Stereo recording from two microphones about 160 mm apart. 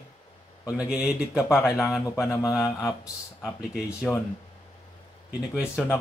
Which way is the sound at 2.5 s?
5° right (ahead or behind).